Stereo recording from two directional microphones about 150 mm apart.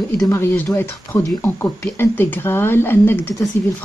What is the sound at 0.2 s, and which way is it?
Speech, 15° left (ahead or behind).